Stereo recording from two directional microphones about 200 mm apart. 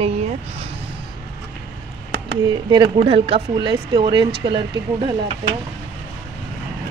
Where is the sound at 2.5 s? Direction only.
20° right (ahead or behind).